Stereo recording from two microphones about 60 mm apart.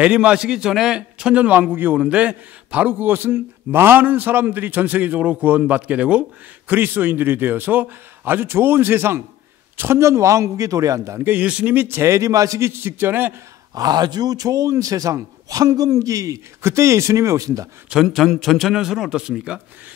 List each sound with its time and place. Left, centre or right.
0.0 s a man's voice: centre
2.0 s a man's voice: right
6.7 s a man's voice: right
11.3 s a man's voice: right
11.7 s a man's voice: right
12.0 s a man's voice: right
12.6 s a man's voice: right
13.7 s a man's voice: right
16.6 s a man's voice: right
18.0 s a man's voice: centre